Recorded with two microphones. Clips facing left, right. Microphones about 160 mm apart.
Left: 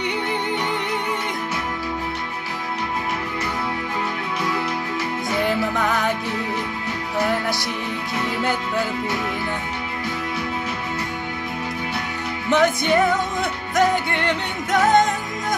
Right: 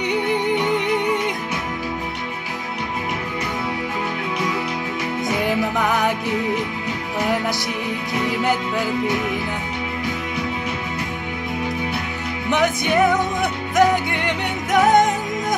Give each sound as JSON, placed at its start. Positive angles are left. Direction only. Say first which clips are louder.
{"t": 5.8, "sound": "music", "louder": "right 2 dB", "side_deg": -15}
{"t": 12.4, "sound": "music", "louder": "left 2 dB", "side_deg": -15}